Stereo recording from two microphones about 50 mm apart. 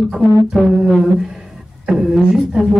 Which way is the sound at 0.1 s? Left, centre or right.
Centre.